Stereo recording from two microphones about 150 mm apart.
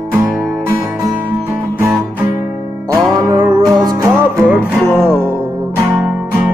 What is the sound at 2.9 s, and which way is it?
Music, 20° right (ahead or behind).